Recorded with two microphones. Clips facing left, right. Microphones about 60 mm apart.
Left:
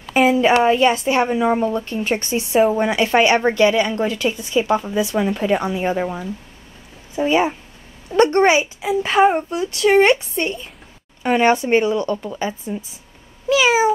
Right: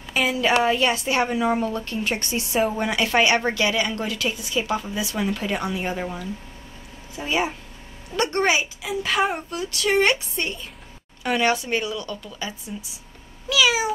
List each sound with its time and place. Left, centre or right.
0.3 s a woman's voice: left
1.0 s a woman's voice: centre; by 5.1 s left
5.1 s speech: centre
7.2 s a woman's voice: left
10.4 s a woman's voice: centre
11.2 s speech: left
13.5 s cat: left